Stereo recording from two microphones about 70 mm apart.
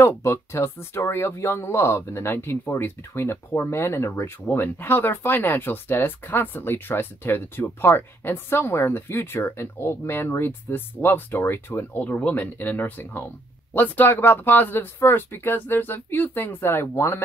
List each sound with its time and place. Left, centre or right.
0.0 s speech: left
12.0 s speech: left